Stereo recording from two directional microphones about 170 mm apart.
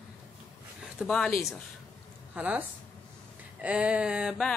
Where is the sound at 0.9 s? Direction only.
Centre (ahead or behind).